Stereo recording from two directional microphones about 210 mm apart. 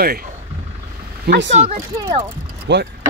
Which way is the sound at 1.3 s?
60° right (ahead or behind).